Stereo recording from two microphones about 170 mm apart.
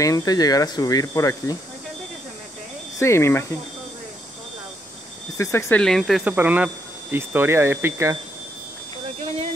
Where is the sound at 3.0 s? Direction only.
15° left (ahead or behind).